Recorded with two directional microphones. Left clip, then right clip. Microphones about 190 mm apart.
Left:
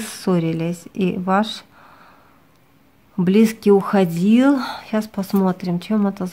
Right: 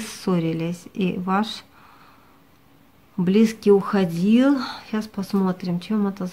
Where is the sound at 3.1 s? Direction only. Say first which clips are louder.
Left 3 dB; 30° left (ahead or behind).